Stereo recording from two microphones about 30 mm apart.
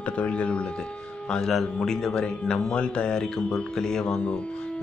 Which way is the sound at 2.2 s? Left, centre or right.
Left.